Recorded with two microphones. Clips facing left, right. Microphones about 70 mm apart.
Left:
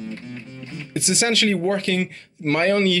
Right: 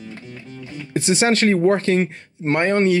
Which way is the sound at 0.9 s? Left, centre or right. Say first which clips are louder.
Right 4 dB; right.